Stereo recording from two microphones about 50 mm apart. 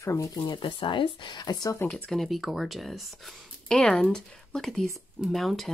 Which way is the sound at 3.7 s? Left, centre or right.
Centre.